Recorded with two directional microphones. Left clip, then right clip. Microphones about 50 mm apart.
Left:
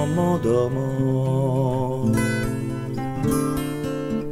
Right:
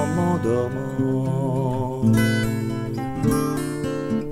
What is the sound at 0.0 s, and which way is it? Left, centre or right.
Music, right.